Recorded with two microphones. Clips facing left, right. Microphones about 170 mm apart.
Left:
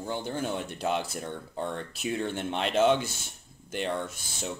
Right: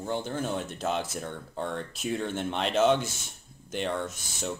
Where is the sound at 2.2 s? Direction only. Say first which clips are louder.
Even; 10° left (ahead or behind).